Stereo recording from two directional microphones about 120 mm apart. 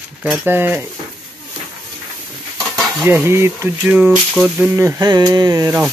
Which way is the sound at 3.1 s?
20° right (ahead or behind).